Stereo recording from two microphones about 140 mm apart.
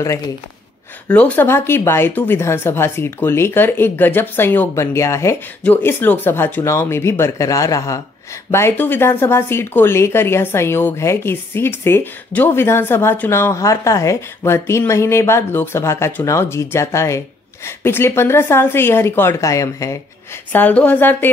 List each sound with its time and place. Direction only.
1.1 s speech: 10° left (ahead or behind)
20.5 s speech: 10° left (ahead or behind)